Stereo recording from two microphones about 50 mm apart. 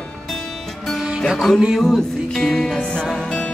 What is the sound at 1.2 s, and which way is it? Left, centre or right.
Music, centre.